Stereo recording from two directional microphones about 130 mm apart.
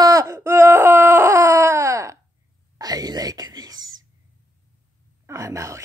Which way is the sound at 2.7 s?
30° right (ahead or behind).